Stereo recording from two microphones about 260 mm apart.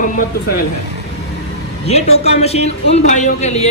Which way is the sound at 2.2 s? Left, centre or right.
Left.